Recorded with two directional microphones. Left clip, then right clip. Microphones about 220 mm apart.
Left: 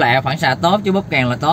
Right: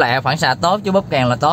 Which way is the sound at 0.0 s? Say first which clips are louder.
Left 1 dB; 25° right (ahead or behind).